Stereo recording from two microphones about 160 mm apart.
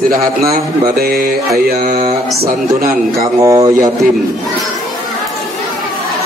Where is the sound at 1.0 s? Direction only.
65° right (ahead or behind).